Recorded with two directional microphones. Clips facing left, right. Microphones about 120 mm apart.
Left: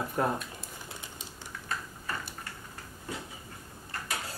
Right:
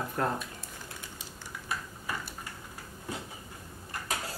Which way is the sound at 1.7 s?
10° right (ahead or behind).